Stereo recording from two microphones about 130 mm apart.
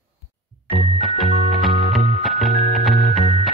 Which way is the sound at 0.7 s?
Centre (ahead or behind).